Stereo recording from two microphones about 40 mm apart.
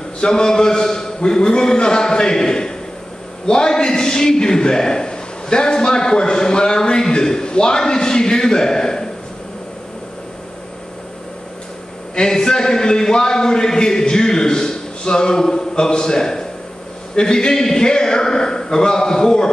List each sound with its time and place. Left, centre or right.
0.2 s a man's voice: centre
12.2 s a sound: centre
17.1 s a man's voice: left